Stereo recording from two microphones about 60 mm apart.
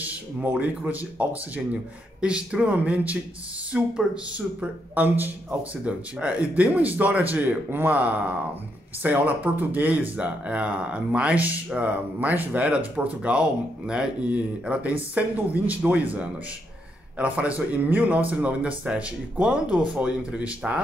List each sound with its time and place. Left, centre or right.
0.0 s speech: right
4.6 s speech: right
5.6 s speech: right